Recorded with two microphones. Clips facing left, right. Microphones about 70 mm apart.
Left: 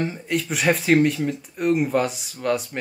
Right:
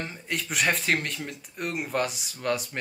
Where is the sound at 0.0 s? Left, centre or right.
Centre.